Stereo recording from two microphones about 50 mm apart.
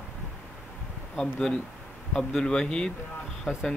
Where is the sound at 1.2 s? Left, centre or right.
Centre.